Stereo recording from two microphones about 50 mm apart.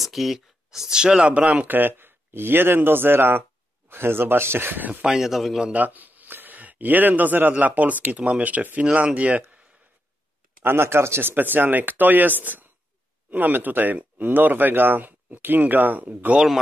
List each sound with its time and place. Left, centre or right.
0.0 s speech: centre; by 1.8 s right
1.8 s speech: right
5.0 s speech: centre
5.7 s speech: right
10.6 s speech: right